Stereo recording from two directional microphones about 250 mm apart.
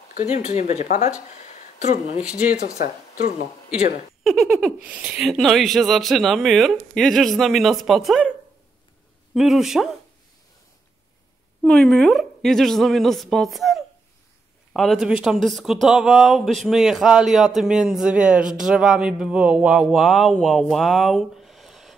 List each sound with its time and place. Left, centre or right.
0.1 s speech: left
2.2 s speech: centre
4.2 s speech: centre
9.3 s speech: centre
11.6 s speech: centre